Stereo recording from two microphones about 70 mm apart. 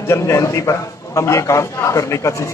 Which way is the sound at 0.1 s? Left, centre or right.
Left.